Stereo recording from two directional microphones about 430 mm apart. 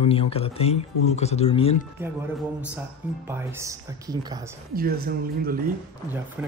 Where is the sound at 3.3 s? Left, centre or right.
Centre.